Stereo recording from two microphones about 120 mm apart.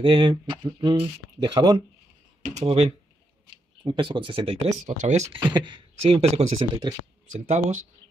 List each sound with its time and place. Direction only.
0.0 s speech: 40° right (ahead or behind)
2.4 s speech: 65° right (ahead or behind)
3.8 s speech: 40° right (ahead or behind)
4.8 s speech: 75° right (ahead or behind)
5.5 s speech: 40° right (ahead or behind); by 6.6 s 60° right (ahead or behind)
6.8 s speech: 35° right (ahead or behind)
7.2 s speech: 75° right (ahead or behind)